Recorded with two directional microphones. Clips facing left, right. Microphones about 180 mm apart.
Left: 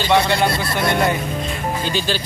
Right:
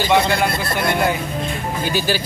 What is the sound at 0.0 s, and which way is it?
Speech, 15° right (ahead or behind).